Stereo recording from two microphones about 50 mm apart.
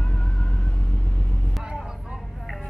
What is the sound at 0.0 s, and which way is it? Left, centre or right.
Vehicle, left.